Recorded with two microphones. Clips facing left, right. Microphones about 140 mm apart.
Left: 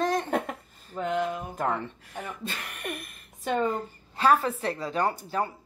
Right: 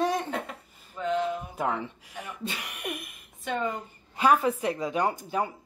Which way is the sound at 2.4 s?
10° right (ahead or behind).